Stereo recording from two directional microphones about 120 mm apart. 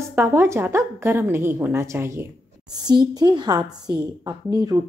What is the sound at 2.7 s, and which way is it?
A woman's voice, 35° right (ahead or behind).